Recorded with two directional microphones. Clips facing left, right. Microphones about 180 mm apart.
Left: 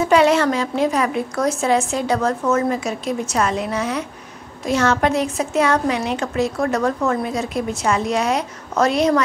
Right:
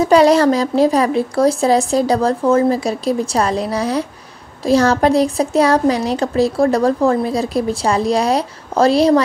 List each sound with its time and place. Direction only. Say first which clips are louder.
0.0 s a woman's voice: right 4 dB; 35° right (ahead or behind)